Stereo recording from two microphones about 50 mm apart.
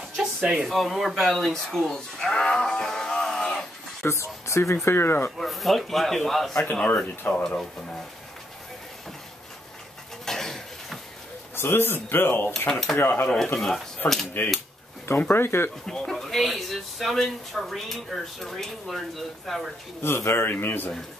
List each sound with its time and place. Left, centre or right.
0.2 s a sound: centre
0.7 s speech: centre
4.0 s speech: left
4.8 s speech: left
5.4 s speech: centre
6.5 s speech: left
10.2 s dishes: centre
11.5 s speech: left
13.6 s speech: centre
14.4 s speech: left
15.9 s speech: centre
20.0 s a man's voice: left
20.4 s speech: left